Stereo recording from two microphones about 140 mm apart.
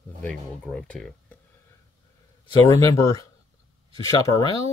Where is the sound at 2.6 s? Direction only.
20° left (ahead or behind).